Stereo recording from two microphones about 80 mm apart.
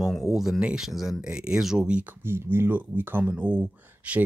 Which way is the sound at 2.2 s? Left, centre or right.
Right.